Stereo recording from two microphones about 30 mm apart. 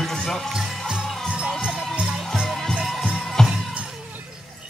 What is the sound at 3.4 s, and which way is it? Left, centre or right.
Music, centre.